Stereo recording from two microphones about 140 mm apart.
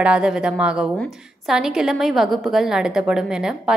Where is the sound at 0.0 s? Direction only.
5° right (ahead or behind).